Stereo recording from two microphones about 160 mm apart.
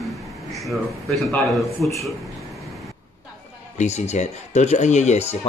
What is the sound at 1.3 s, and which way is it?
Speech, 20° left (ahead or behind).